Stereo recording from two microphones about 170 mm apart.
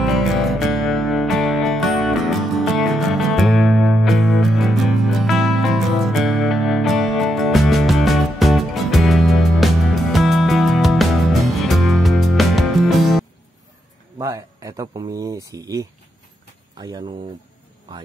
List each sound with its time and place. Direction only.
0.0 s music: centre (ahead or behind)
14.1 s speech: 20° right (ahead or behind)